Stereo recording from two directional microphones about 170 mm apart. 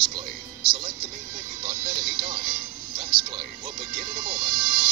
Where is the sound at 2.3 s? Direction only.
55° right (ahead or behind).